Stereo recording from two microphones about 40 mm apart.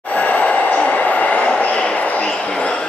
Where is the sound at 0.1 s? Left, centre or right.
Left.